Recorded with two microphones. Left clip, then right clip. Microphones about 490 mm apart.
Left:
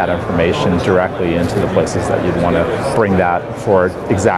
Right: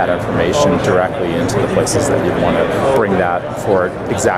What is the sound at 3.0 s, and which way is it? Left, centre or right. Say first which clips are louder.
Speech: left 1 dB; left.